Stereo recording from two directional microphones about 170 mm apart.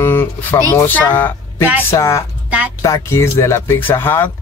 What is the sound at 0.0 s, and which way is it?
Speech, 15° left (ahead or behind).